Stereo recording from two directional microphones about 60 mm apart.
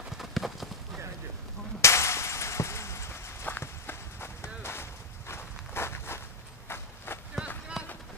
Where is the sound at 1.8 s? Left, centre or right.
Left.